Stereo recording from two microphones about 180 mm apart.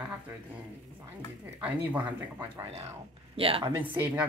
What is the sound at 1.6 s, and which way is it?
Speech, 10° right (ahead or behind).